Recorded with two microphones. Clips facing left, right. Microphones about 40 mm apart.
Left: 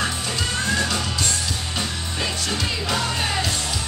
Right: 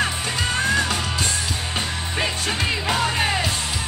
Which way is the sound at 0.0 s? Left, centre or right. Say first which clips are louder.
Right 2 dB; right.